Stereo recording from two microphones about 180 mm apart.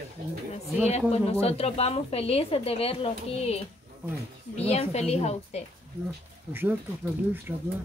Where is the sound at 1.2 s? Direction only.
35° left (ahead or behind).